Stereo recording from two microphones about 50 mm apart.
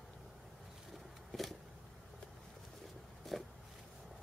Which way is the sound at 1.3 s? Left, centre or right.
Centre.